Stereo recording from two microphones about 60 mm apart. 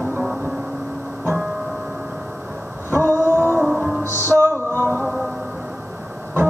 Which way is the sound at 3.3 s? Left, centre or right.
Right.